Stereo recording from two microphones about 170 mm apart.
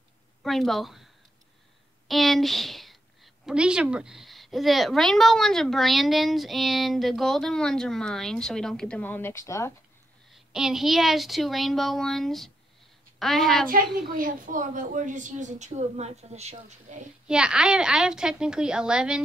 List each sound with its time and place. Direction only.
0.4 s a woman's voice: centre (ahead or behind)
2.0 s a woman's voice: centre (ahead or behind); by 9.7 s 15° left (ahead or behind)
10.3 s a woman's voice: centre (ahead or behind)
13.9 s a woman's voice: 55° right (ahead or behind)
17.3 s a woman's voice: 5° right (ahead or behind)